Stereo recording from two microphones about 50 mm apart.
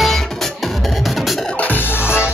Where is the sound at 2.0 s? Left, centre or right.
Left.